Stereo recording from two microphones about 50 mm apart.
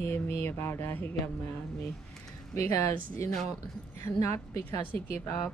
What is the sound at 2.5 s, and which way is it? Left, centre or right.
Speech, left.